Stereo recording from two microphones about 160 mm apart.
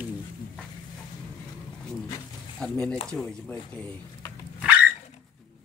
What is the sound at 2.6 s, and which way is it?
Speech, 5° left (ahead or behind).